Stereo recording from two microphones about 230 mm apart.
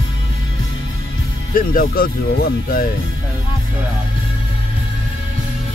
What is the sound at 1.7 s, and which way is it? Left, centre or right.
Speech, left.